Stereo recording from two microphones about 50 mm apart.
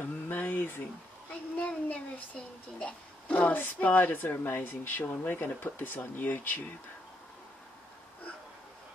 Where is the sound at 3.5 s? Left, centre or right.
Left.